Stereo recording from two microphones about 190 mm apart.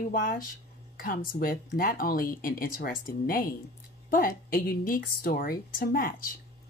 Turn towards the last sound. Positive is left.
turn(degrees=50)  # may be behind; listen again after turning